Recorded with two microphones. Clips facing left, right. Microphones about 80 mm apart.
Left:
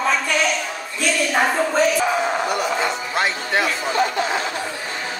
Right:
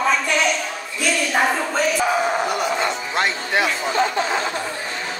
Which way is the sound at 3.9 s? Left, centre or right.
Right.